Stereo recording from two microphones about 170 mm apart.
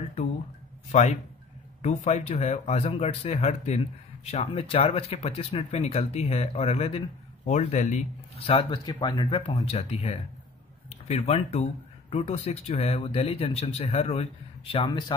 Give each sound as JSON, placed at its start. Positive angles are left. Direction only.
{"t": 1.8, "sound": "speech", "side_deg": 40}
{"t": 8.5, "sound": "speech", "side_deg": 30}